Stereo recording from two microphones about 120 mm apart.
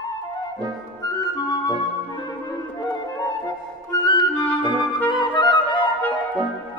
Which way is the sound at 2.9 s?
35° left (ahead or behind).